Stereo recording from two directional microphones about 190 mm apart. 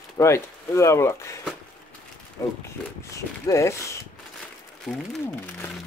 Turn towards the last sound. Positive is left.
turn(degrees=15)  # may be behind; listen again after turning